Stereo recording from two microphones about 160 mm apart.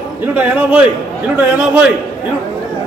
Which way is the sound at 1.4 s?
5° right (ahead or behind).